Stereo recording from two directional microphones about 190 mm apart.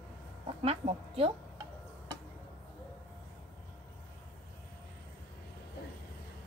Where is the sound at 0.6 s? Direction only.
30° right (ahead or behind).